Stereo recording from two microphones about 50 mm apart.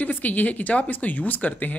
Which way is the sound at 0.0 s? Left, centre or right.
Left.